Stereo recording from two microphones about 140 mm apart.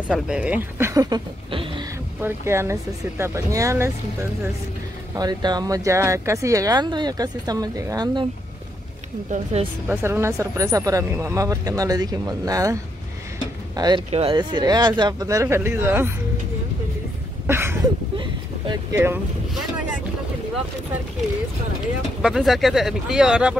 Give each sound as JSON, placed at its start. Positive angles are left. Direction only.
{"t": 0.1, "sound": "speech", "side_deg": -10}
{"t": 1.5, "sound": "a sound", "side_deg": -40}
{"t": 2.2, "sound": "speech", "side_deg": -20}
{"t": 5.1, "sound": "speech", "side_deg": -30}
{"t": 9.3, "sound": "speech", "side_deg": -50}
{"t": 9.8, "sound": "speech", "side_deg": -15}
{"t": 13.7, "sound": "speech", "side_deg": -30}
{"t": 17.5, "sound": "a sound", "side_deg": -15}
{"t": 18.1, "sound": "boat", "side_deg": -35}
{"t": 22.2, "sound": "speech", "side_deg": 0}